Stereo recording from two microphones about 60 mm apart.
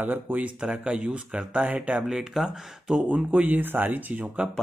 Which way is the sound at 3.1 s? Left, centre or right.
Right.